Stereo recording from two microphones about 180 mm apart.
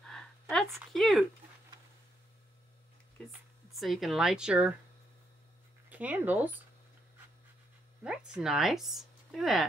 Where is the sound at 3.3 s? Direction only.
Centre (ahead or behind).